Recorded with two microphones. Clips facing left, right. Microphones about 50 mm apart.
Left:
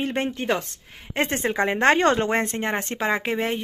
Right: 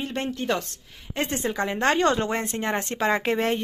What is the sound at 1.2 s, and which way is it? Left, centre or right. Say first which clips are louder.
Speech: left 3 dB; left.